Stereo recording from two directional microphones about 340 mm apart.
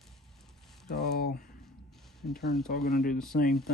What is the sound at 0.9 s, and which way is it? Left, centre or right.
Speech, left.